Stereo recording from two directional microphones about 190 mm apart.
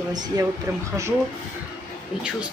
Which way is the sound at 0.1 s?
20° right (ahead or behind).